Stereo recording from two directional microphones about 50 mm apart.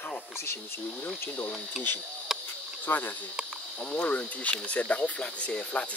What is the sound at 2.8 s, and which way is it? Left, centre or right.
Speech, left.